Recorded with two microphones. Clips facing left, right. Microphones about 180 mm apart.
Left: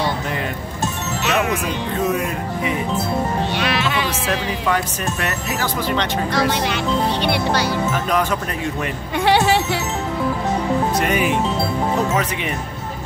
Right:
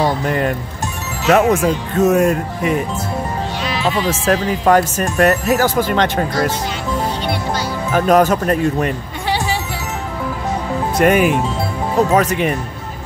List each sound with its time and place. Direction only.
2.0 s speech: 45° right (ahead or behind)
3.5 s music: 70° left (ahead or behind)
4.1 s speech: 50° right (ahead or behind)
7.9 s speech: 45° right (ahead or behind)
9.2 s music: 65° left (ahead or behind)
11.0 s speech: 50° right (ahead or behind)